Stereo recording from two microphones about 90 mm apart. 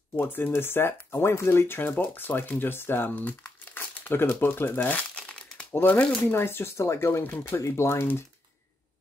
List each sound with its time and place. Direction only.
0.2 s speech: 25° left (ahead or behind)